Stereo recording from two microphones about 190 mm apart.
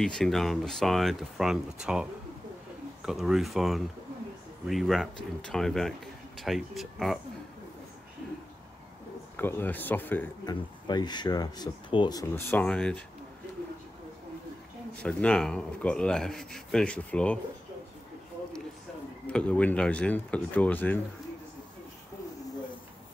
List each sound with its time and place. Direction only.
0.0 s speech: 5° left (ahead or behind)
3.1 s speech: centre (ahead or behind)
9.4 s speech: 10° left (ahead or behind)
10.4 s speech: 20° left (ahead or behind); by 13.0 s 5° left (ahead or behind)
15.0 s speech: 5° left (ahead or behind)
19.2 s speech: 5° left (ahead or behind)